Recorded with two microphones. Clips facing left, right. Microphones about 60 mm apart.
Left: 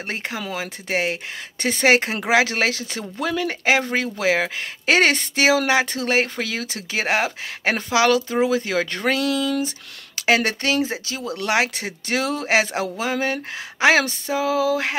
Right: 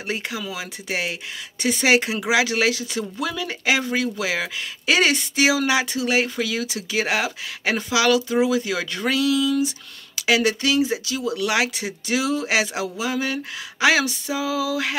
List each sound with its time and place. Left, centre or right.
0.1 s speech: left